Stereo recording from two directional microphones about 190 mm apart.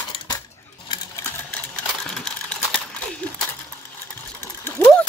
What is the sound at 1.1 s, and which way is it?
Sewing machine, 10° left (ahead or behind).